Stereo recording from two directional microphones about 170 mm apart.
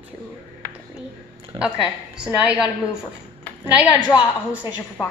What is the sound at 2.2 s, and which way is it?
Speech, 5° right (ahead or behind).